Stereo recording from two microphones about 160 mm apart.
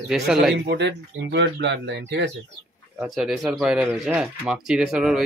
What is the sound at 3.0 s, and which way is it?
A man's voice, centre (ahead or behind).